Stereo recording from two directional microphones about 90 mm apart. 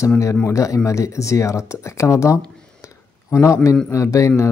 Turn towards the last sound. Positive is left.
turn(degrees=35)  # may be behind; listen again after turning